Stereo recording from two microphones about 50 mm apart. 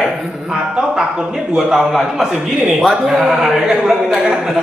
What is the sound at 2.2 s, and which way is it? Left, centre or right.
A man's voice, centre.